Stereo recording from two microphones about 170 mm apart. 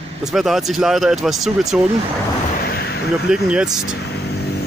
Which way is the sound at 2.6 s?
70° left (ahead or behind).